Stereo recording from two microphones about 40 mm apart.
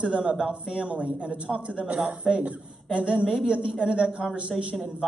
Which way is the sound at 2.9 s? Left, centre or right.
Right.